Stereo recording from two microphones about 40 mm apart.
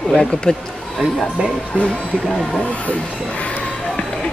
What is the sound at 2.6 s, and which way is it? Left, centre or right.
Speech, left.